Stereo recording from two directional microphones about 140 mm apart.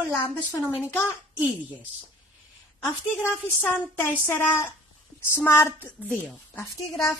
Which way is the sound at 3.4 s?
10° left (ahead or behind).